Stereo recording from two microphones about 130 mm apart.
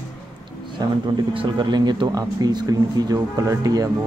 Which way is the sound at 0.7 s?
35° right (ahead or behind).